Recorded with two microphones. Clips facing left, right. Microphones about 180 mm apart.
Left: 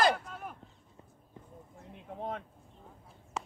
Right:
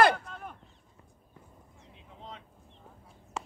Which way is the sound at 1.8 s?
55° left (ahead or behind).